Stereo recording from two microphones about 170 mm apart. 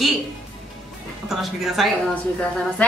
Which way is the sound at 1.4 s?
Centre (ahead or behind).